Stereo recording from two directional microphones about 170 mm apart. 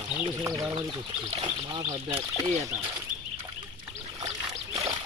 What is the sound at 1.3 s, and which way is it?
Speech, 35° right (ahead or behind).